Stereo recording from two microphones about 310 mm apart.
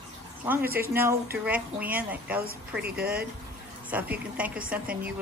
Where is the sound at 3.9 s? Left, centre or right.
Centre.